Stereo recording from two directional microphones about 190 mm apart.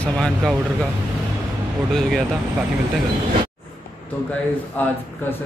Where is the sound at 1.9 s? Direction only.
5° left (ahead or behind).